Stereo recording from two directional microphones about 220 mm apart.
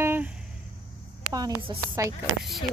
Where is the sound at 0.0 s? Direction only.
10° right (ahead or behind).